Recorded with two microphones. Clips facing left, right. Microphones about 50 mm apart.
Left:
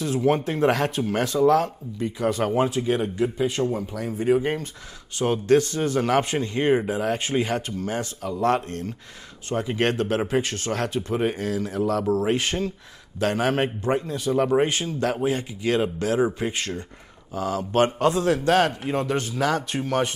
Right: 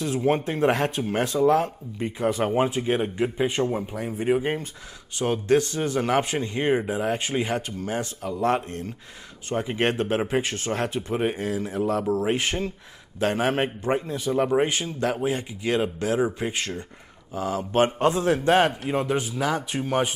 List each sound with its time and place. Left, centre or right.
0.0 s speech: right
7.7 s speech: right
18.9 s speech: centre